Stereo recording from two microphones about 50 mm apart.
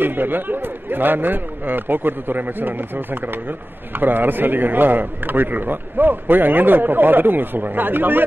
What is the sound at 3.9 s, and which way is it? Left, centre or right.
Speech, right.